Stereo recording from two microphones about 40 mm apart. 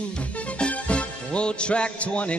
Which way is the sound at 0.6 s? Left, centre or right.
Left.